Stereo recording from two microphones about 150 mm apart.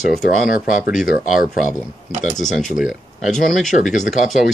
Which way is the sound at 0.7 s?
65° left (ahead or behind).